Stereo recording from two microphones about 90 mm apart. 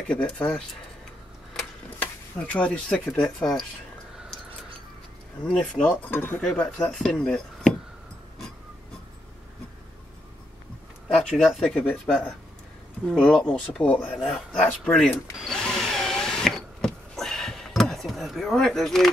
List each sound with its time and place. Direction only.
0.1 s speech: 15° left (ahead or behind)
2.0 s speech: 15° left (ahead or behind)
5.4 s speech: 10° left (ahead or behind)
11.3 s speech: centre (ahead or behind)
11.7 s speech: 15° left (ahead or behind)
13.2 s speech: 10° left (ahead or behind)
14.1 s speech: centre (ahead or behind)
14.7 s speech: 15° left (ahead or behind)
15.4 s power windows: 5° left (ahead or behind)